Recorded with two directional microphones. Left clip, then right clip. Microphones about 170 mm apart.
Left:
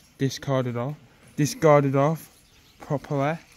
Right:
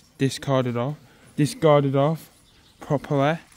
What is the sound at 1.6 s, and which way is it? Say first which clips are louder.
Speech: even; 5° left (ahead or behind).